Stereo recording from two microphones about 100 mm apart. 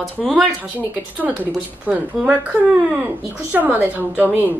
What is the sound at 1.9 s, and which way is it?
Speech, 15° right (ahead or behind).